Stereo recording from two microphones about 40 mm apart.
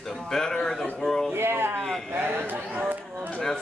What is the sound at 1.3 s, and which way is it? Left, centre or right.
Speech, right.